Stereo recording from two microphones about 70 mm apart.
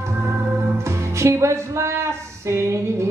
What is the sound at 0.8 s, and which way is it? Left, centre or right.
Music, right.